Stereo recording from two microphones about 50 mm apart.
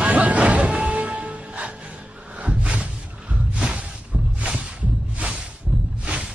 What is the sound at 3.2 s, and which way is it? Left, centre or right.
Music, right.